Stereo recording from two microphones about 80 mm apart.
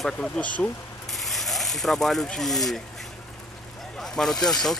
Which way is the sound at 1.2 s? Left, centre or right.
Centre.